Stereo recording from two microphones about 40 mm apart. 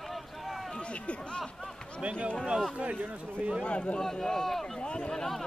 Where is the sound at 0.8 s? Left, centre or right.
Left.